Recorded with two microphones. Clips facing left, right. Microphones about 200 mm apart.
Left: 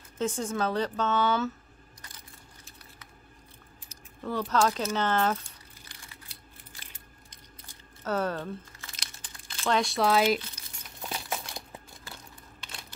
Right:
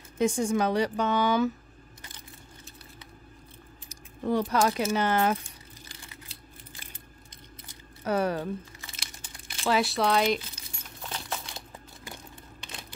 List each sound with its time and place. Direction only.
0.2 s speech: 15° right (ahead or behind)
3.9 s speech: 20° right (ahead or behind)
8.0 s speech: 10° right (ahead or behind)
8.9 s computer keyboard: 5° right (ahead or behind)
9.7 s speech: 5° right (ahead or behind)
11.0 s crumpling: 5° left (ahead or behind)
12.0 s a sound: 15° right (ahead or behind)